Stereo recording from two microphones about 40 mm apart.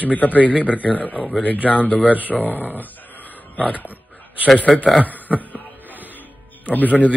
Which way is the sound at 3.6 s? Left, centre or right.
Left.